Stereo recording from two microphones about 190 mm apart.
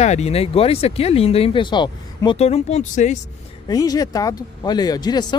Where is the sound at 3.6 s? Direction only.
20° left (ahead or behind).